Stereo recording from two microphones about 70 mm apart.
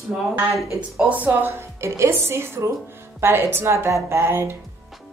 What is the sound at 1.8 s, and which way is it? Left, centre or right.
Speech, right.